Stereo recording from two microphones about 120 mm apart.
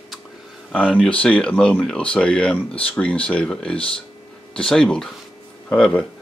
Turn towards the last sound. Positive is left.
turn(degrees=5)  # may be behind; listen again after turning